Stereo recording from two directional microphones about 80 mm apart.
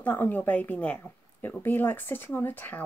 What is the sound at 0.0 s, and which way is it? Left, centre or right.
Speech, left.